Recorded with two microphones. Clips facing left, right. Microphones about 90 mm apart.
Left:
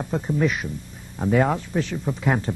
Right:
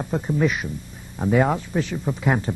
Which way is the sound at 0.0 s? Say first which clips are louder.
Right 1 dB; 5° right (ahead or behind).